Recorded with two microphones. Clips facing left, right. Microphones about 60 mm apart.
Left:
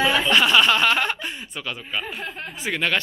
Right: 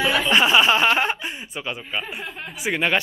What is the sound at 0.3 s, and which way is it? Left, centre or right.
Speech, centre.